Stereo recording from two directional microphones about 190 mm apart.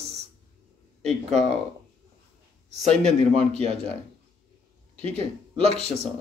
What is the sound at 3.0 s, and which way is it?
Speech, 30° right (ahead or behind).